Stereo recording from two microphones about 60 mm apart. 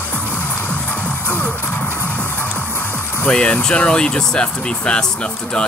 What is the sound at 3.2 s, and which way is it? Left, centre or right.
Speech, centre.